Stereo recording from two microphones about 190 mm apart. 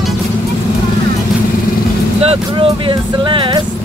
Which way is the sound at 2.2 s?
30° right (ahead or behind).